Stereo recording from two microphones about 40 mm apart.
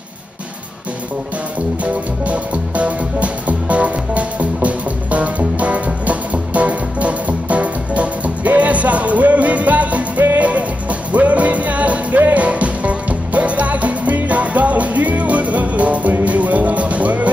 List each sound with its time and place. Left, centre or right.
1.8 s music: right
12.4 s music: right